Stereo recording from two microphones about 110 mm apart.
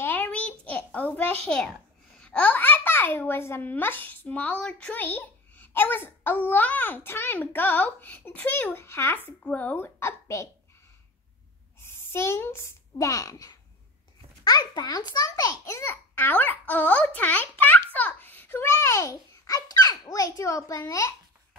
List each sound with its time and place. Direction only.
0.0 s a sound: 15° left (ahead or behind)
2.1 s a child's voice: 10° left (ahead or behind); by 10.5 s 25° left (ahead or behind)
11.8 s a child's voice: 25° left (ahead or behind)
14.7 s a child's voice: 40° left (ahead or behind)